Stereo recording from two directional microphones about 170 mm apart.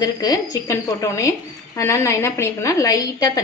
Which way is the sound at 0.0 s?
20° left (ahead or behind).